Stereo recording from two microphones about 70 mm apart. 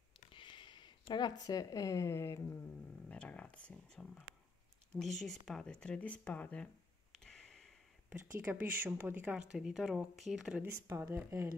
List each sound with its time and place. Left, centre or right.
0.7 s speech: left
3.1 s speech: centre
5.7 s speech: centre
7.2 s a sound: centre
8.1 s speech: right
10.6 s speech: right